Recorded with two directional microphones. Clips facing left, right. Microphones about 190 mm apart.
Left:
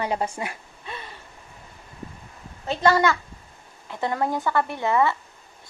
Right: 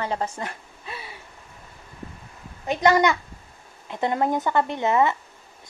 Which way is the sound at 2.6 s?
15° right (ahead or behind).